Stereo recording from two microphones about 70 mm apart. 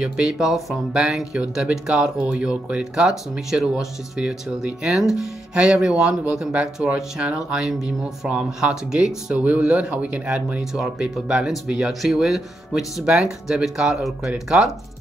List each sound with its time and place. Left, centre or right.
0.0 s speech: centre